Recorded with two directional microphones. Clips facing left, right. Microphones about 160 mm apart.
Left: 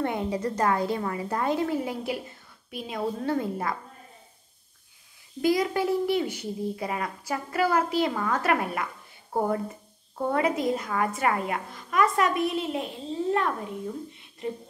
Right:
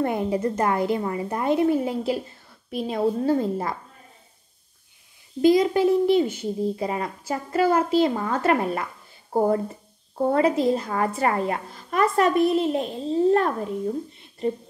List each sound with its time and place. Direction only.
0.0 s a child's voice: 25° right (ahead or behind)
5.4 s a child's voice: 25° right (ahead or behind)